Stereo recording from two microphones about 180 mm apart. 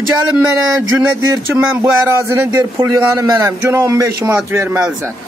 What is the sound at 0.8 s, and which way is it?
Speech, 90° right.